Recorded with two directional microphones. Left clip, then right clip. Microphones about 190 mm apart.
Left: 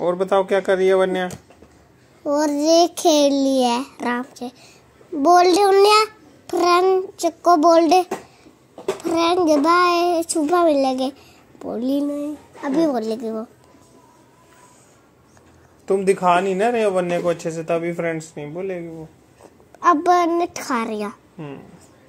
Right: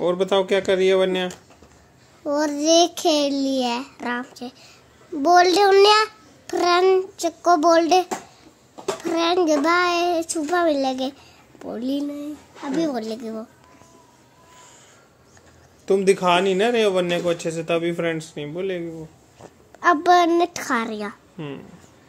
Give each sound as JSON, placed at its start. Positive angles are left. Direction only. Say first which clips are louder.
{"t": 0.0, "sound": "a child's voice", "louder": "left 1 dB", "side_deg": -20}
{"t": 15.8, "sound": "speech", "louder": "even", "side_deg": -20}
{"t": 17.2, "sound": "speech", "louder": "left 1 dB", "side_deg": -10}
{"t": 19.8, "sound": "a child's voice", "louder": "even", "side_deg": -5}
{"t": 21.4, "sound": "speech", "louder": "right 2 dB", "side_deg": -30}